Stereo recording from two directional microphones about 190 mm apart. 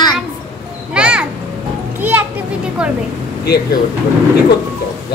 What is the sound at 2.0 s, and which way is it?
Children playing, 10° right (ahead or behind).